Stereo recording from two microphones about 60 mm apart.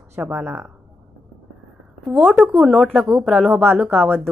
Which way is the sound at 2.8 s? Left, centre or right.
Right.